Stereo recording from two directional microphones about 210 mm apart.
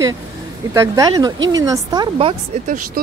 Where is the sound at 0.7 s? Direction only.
15° right (ahead or behind).